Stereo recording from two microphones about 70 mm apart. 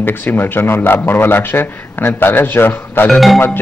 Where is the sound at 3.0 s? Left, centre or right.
Centre.